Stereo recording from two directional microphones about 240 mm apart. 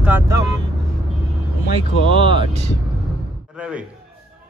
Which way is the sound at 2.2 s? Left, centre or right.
Right.